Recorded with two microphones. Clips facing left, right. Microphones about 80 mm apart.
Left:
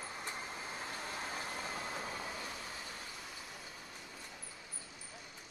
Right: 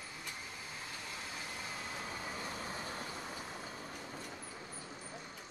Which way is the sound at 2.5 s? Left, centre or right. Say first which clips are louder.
Right 4 dB; right.